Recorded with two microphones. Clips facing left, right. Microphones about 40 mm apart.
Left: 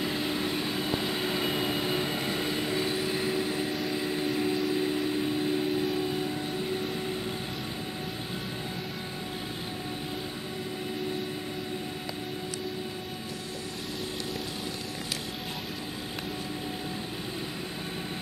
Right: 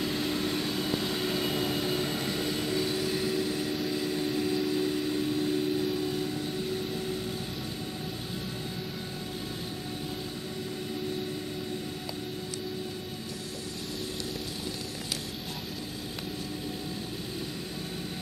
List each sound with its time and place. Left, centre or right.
0.0 s vehicle: centre
5.9 s train: centre